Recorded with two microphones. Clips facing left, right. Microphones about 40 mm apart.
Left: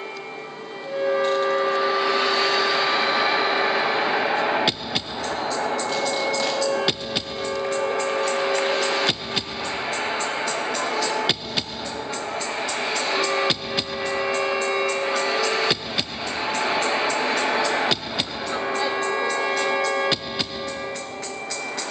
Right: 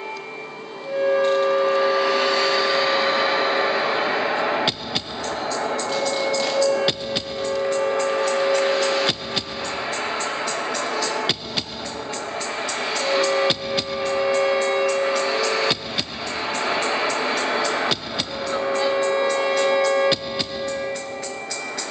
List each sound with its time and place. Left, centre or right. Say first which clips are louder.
1.0 s a sound: right 3 dB; centre
4.6 s hammer: even; centre
5.9 s music: right 1 dB; centre
8.1 s music: right 2 dB; centre
12.6 s music: right 2 dB; centre